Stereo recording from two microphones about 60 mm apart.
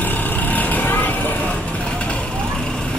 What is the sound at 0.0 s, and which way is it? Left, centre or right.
Vehicle, left.